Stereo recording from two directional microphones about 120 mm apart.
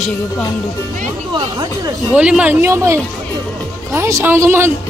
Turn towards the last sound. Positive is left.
turn(degrees=-20)  # may be behind; listen again after turning